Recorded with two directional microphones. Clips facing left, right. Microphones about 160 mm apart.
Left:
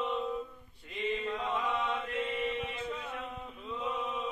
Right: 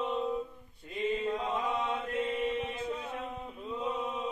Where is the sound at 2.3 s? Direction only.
20° right (ahead or behind).